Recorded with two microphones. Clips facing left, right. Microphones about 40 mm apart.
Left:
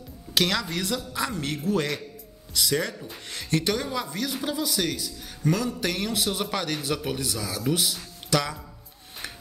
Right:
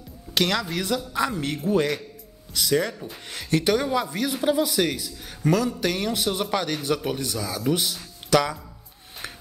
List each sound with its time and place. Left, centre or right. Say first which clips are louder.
0.3 s a man's voice: right 1 dB; centre